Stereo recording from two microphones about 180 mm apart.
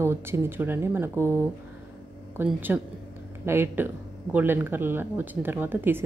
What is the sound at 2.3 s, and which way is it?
Speech, 10° right (ahead or behind).